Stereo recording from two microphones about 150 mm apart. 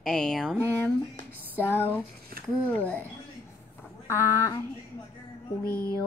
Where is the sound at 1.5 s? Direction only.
15° left (ahead or behind).